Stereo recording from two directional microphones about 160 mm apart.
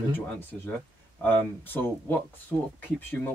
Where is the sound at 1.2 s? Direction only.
10° left (ahead or behind).